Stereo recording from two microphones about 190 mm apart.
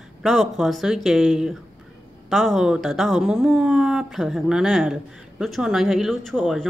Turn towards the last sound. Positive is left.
turn(degrees=0)  # may be behind; listen again after turning